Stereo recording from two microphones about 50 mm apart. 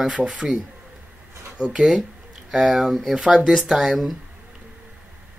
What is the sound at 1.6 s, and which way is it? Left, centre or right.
Speech, centre.